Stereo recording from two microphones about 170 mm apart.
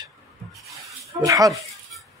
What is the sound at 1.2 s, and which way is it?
Speech, 20° right (ahead or behind).